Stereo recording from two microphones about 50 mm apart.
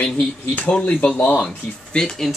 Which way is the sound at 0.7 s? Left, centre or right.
Left.